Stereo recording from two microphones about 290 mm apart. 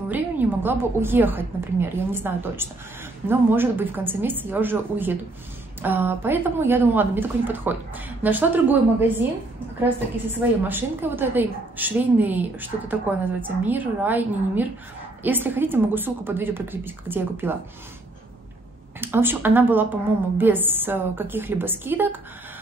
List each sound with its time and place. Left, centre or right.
0.1 s a woman's voice: centre
10.7 s a woman's voice: centre
18.9 s a woman's voice: centre